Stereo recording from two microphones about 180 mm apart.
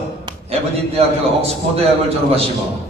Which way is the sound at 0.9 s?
35° right (ahead or behind).